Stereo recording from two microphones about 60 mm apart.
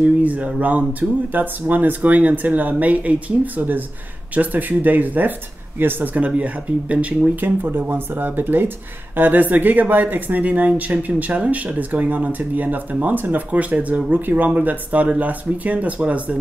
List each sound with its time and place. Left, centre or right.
0.0 s speech: right